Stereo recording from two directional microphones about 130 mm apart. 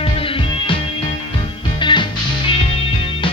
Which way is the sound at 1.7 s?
40° left (ahead or behind).